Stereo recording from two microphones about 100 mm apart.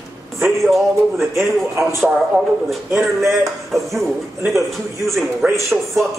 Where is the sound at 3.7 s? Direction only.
Centre (ahead or behind).